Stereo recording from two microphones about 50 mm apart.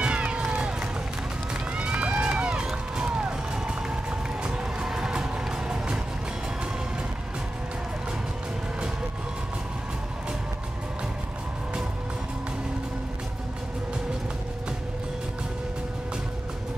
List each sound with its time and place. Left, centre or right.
0.0 s run: right
1.8 s music: right